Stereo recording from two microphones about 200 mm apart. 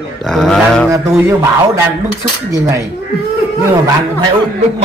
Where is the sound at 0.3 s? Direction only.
Centre (ahead or behind).